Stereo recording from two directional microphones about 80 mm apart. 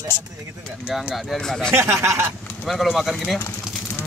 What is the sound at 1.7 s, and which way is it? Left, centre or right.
Speech, right.